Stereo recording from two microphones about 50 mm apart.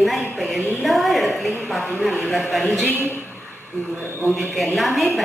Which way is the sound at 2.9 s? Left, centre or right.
Right.